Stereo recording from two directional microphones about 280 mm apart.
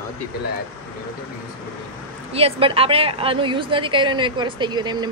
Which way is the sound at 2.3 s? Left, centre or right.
Centre.